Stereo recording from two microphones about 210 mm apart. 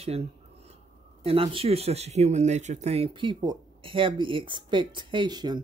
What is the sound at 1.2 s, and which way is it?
Speech, 25° right (ahead or behind).